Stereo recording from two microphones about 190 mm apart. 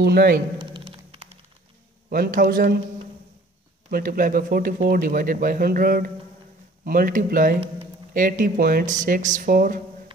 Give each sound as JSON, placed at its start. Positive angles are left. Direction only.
{"t": 0.0, "sound": "speech", "side_deg": -55}
{"t": 0.6, "sound": "a sound", "side_deg": -25}
{"t": 2.0, "sound": "speech", "side_deg": -50}
{"t": 3.9, "sound": "speech", "side_deg": -45}